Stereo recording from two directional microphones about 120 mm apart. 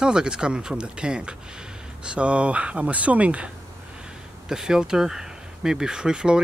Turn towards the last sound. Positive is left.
turn(degrees=-5)  # may be behind; listen again after turning